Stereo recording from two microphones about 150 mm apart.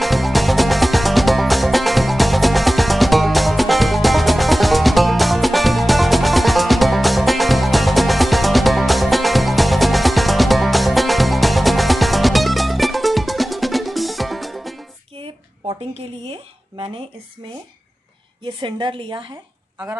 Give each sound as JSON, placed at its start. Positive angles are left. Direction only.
{"t": 0.0, "sound": "music", "side_deg": 0}
{"t": 15.1, "sound": "a sound", "side_deg": -35}
{"t": 18.6, "sound": "a woman's voice", "side_deg": -30}